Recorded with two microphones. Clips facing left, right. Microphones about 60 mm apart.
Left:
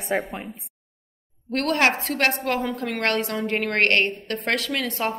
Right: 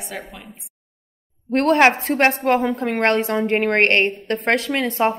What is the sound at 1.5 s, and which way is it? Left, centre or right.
A woman's voice, right.